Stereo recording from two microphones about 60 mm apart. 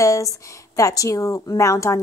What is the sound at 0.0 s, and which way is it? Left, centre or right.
A woman's voice, left.